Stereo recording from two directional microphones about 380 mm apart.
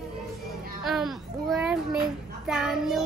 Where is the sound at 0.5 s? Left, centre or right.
Centre.